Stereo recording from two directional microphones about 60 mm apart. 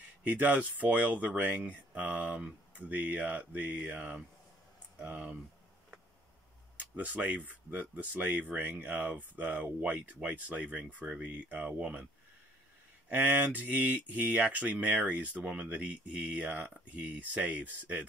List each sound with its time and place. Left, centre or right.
0.3 s speech: right
6.8 s speech: right
13.1 s speech: right